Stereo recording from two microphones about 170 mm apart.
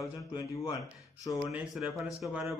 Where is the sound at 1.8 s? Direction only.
5° right (ahead or behind).